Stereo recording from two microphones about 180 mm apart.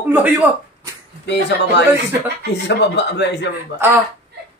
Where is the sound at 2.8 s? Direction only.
75° left (ahead or behind).